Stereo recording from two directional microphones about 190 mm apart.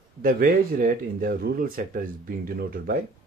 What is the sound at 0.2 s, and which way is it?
Speech, 50° right (ahead or behind).